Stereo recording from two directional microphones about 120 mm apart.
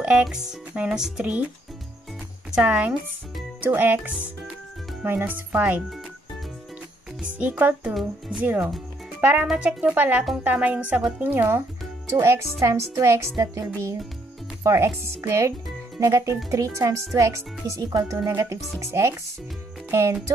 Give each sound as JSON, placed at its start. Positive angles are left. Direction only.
{"t": 0.0, "sound": "speech", "side_deg": -5}
{"t": 2.5, "sound": "speech", "side_deg": -10}
{"t": 7.2, "sound": "speech", "side_deg": -10}
{"t": 11.2, "sound": "speech", "side_deg": -20}